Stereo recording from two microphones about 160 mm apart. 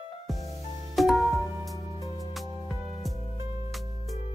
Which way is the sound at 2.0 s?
20° left (ahead or behind).